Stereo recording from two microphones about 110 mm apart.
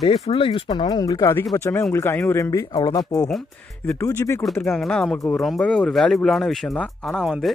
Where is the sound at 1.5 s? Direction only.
25° left (ahead or behind).